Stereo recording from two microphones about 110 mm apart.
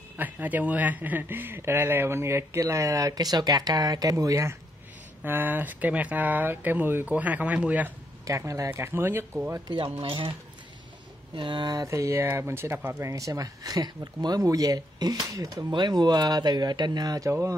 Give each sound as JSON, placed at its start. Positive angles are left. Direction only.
{"t": 0.2, "sound": "speech", "side_deg": -15}
{"t": 8.3, "sound": "speech", "side_deg": -30}
{"t": 9.9, "sound": "speech", "side_deg": -50}
{"t": 11.3, "sound": "speech", "side_deg": -45}
{"t": 11.7, "sound": "speech", "side_deg": -30}